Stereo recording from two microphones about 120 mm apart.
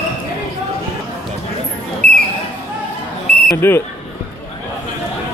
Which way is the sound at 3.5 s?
15° left (ahead or behind).